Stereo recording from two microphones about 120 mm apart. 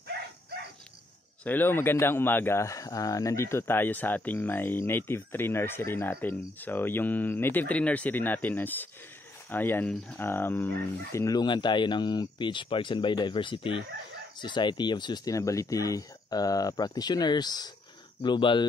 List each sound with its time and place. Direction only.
1.4 s speech: 15° left (ahead or behind)
11.3 s speech: 40° left (ahead or behind)